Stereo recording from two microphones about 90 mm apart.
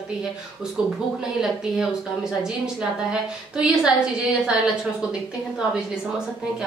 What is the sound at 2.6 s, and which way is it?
Speech, 10° right (ahead or behind).